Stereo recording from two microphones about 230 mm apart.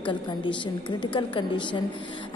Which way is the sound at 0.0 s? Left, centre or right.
Left.